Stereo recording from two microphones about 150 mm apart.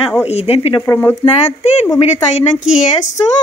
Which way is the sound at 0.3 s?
45° left (ahead or behind).